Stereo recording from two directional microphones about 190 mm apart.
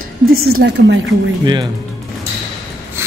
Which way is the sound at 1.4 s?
25° right (ahead or behind).